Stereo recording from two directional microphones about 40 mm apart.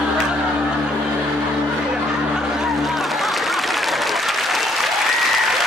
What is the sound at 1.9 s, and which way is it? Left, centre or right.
Snicker, centre.